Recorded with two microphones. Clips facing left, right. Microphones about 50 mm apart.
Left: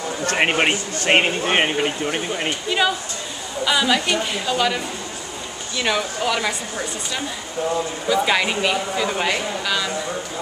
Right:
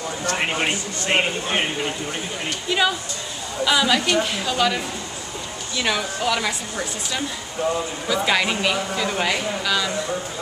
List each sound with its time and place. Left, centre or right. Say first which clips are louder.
0.2 s speech: left 5 dB; left
2.7 s speech: right 1 dB; centre
5.8 s speech: left 2 dB; centre